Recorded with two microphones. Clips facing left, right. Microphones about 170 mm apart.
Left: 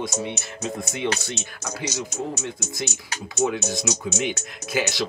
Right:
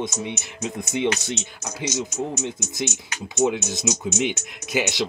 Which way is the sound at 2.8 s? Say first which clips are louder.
Right 2 dB; 30° left (ahead or behind).